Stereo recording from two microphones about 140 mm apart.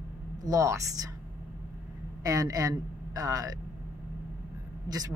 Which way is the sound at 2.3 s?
25° right (ahead or behind).